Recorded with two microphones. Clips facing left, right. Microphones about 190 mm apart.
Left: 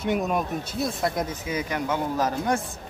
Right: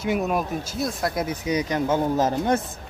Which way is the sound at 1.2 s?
15° right (ahead or behind).